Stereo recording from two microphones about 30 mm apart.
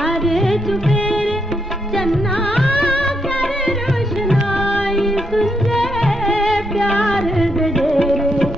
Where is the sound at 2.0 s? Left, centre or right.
Centre.